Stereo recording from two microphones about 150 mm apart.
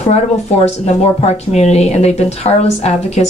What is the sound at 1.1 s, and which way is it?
A woman's voice, 45° left (ahead or behind).